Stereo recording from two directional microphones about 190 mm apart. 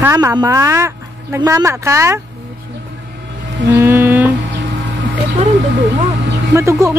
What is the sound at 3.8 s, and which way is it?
Music, 10° right (ahead or behind).